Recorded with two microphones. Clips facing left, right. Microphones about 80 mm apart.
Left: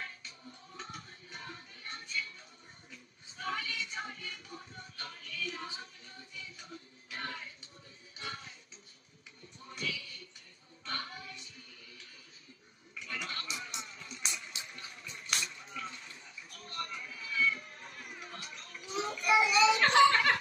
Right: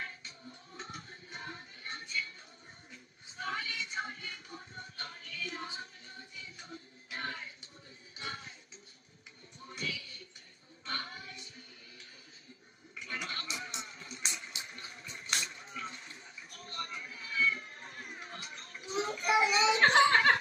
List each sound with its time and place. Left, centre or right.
0.7 s music: right
9.7 s a sound: right
10.9 s music: right
13.0 s goat: right